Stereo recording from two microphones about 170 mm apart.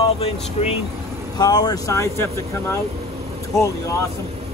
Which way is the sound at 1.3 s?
25° left (ahead or behind).